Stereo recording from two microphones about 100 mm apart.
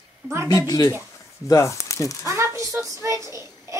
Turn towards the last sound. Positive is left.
turn(degrees=-30)  # may be behind; listen again after turning